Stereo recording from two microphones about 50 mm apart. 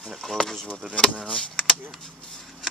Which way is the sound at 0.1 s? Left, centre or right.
Centre.